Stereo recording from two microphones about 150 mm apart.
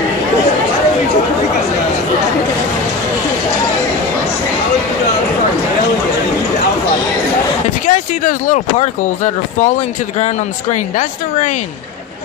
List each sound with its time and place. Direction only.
7.8 s speech: 60° left (ahead or behind)